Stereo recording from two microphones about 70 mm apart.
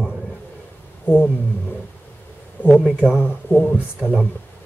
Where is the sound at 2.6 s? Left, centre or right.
Left.